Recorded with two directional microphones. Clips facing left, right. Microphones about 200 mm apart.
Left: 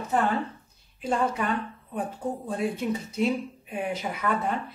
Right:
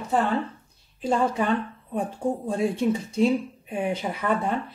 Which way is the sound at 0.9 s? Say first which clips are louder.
Right 3 dB; 30° right (ahead or behind).